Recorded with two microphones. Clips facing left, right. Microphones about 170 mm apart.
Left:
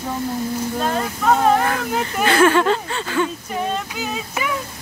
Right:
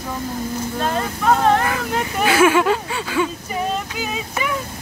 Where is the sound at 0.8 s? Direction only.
Centre (ahead or behind).